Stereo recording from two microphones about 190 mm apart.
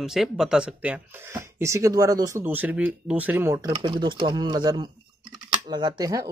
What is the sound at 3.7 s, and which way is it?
Speech, 25° right (ahead or behind).